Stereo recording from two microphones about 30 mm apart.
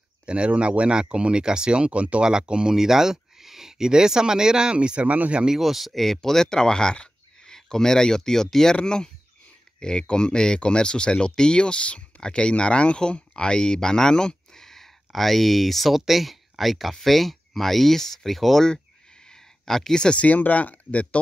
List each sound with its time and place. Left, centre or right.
0.3 s speech: right
1.4 s speech: right
2.2 s speech: right
2.7 s speech: centre
4.7 s speech: right
5.0 s speech: right
5.5 s speech: centre
5.9 s speech: centre
8.8 s speech: left
14.6 s speech: centre
19.6 s speech: centre
20.2 s speech: left